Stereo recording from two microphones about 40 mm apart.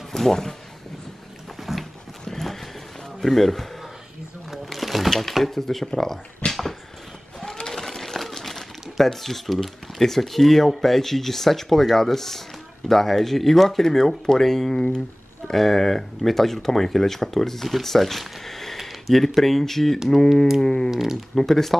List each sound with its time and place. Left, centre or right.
0.1 s speech: centre
1.6 s a sound: centre
2.2 s horse: centre
3.2 s speech: centre
4.5 s a sound: centre
5.1 s speech: centre
6.4 s dog: left
7.5 s a sound: centre
9.0 s speech: centre
18.9 s a sound: centre
19.2 s speech: centre
20.9 s speech: centre
21.4 s speech: centre